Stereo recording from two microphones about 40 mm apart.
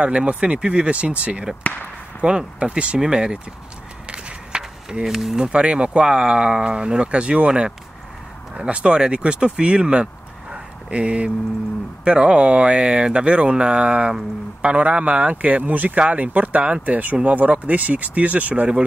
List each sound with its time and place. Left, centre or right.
0.0 s speech: right
4.1 s a sound: right
5.0 s speech: centre
5.4 s speech: right
10.5 s a sound: right
12.0 s speech: right